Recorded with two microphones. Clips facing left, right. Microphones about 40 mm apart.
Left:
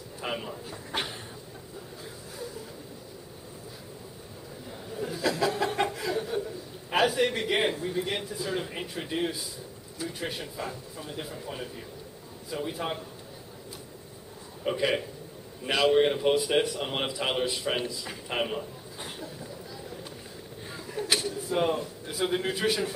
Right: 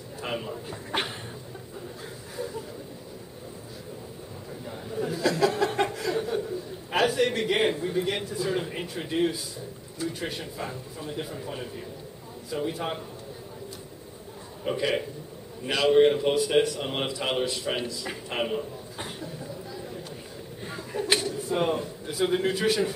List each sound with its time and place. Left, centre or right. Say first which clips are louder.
0.2 s a man's voice: right 1 dB; centre
0.7 s speech: right 3 dB; centre
4.6 s chatter: right 4 dB; centre
5.2 s chuckle: right 3 dB; centre
6.9 s a man's voice: right 1 dB; centre
14.6 s a man's voice: even; centre
19.0 s a sound: right 2 dB; centre
20.6 s chuckle: right 3 dB; centre
21.2 s speech: right 1 dB; centre